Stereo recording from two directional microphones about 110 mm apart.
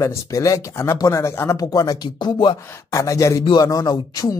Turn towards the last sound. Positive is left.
turn(degrees=35)  # may be behind; listen again after turning